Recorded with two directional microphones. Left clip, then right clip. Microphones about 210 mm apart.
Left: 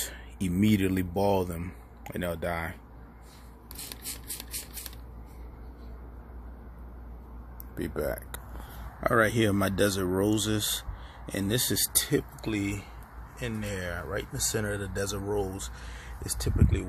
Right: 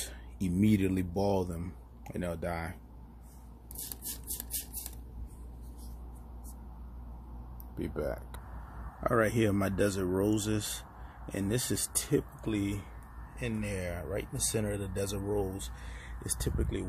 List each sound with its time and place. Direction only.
0.0 s speech: centre (ahead or behind)
7.7 s speech: 5° left (ahead or behind)